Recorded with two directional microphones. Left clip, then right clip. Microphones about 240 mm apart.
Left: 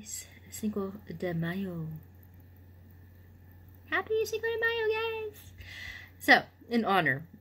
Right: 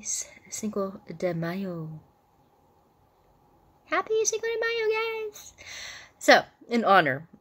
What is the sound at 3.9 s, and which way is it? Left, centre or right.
A woman's voice, centre.